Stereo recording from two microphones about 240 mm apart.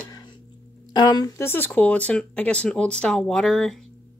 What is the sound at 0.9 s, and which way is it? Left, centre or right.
Speech, centre.